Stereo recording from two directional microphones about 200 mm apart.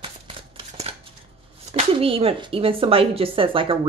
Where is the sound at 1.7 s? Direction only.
30° right (ahead or behind).